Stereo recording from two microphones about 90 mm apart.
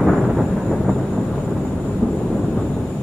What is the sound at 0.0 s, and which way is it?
Thunder, centre (ahead or behind).